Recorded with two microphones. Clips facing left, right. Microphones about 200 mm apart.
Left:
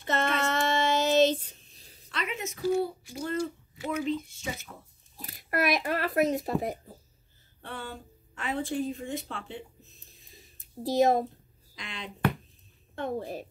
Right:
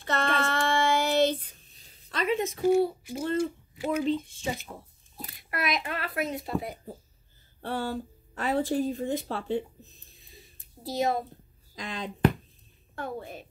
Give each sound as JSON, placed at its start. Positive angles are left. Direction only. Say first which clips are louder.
{"t": 0.0, "sound": "child singing", "louder": "even", "side_deg": 20}
{"t": 2.0, "sound": "a sound", "louder": "right 7 dB", "side_deg": -35}
{"t": 2.6, "sound": "speech", "louder": "right 3 dB", "side_deg": -25}
{"t": 5.2, "sound": "a child's voice", "louder": "left 4 dB", "side_deg": 40}
{"t": 7.6, "sound": "speech", "louder": "right 8 dB", "side_deg": -35}
{"t": 11.0, "sound": "a child's voice", "louder": "left 4 dB", "side_deg": 45}
{"t": 11.7, "sound": "speech", "louder": "right 6 dB", "side_deg": -40}
{"t": 13.0, "sound": "a woman's voice", "louder": "left 4 dB", "side_deg": 35}